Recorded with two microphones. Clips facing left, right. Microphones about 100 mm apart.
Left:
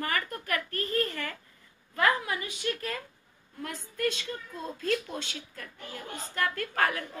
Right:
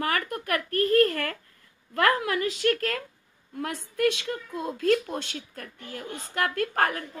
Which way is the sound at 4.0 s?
65° right (ahead or behind).